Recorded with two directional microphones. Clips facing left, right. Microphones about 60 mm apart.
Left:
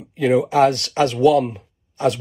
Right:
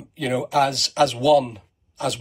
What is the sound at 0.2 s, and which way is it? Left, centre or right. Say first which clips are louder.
Speech: left 5 dB; left.